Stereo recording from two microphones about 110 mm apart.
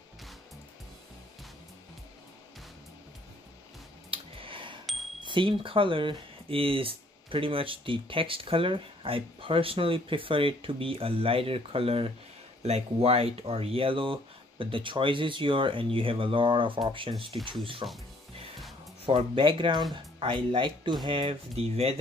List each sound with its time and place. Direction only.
4.1 s a sound: 55° right (ahead or behind)
5.2 s speech: 50° right (ahead or behind)
19.0 s speech: 50° right (ahead or behind)